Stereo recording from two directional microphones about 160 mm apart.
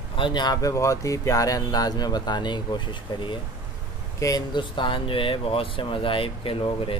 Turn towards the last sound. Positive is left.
turn(degrees=35)  # may be behind; listen again after turning